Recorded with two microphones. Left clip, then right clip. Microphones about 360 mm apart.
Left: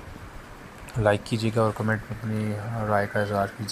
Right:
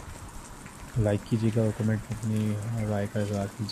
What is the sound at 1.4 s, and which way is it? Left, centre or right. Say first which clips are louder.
Speech: left 4 dB; left.